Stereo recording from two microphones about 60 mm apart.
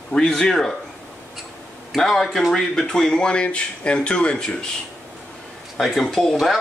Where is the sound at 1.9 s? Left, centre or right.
Centre.